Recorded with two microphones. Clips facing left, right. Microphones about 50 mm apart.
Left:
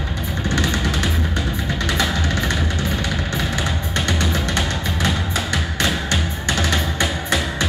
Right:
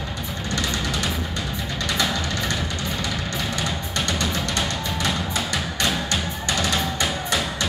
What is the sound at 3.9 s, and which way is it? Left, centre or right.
Music, left.